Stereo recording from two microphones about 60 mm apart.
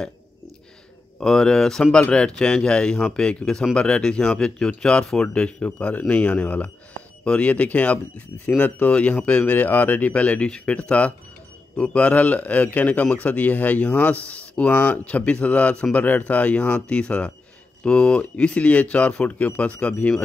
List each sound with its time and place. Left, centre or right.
1.2 s a man's voice: centre